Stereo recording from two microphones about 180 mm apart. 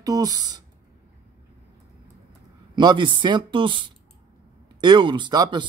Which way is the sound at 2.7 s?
25° right (ahead or behind).